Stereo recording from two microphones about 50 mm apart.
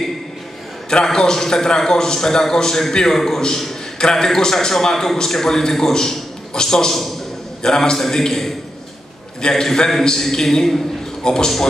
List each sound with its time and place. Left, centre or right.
0.8 s a man's voice: centre